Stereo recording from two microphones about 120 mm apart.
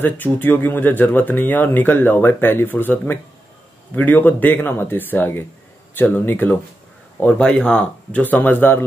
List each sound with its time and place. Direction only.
0.0 s speech: 15° left (ahead or behind)